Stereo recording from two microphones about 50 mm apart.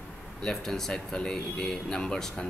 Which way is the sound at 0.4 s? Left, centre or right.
Centre.